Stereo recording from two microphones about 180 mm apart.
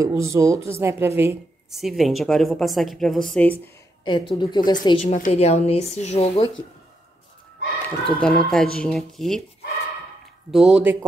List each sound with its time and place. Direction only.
0.0 s a woman's voice: 15° right (ahead or behind)
1.7 s a woman's voice: centre (ahead or behind)
4.0 s a woman's voice: 25° left (ahead or behind)
5.0 s speech: 35° left (ahead or behind)
7.8 s a woman's voice: 5° left (ahead or behind)
10.5 s a woman's voice: centre (ahead or behind)